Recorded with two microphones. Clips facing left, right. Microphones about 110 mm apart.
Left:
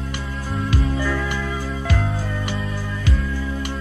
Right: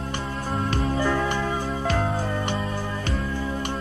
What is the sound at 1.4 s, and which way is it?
Music, 35° right (ahead or behind).